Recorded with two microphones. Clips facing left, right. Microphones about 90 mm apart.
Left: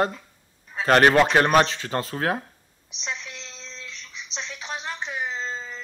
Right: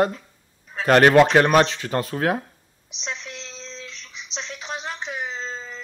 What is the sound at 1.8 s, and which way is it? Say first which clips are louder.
Speech: right 3 dB; 30° left (ahead or behind).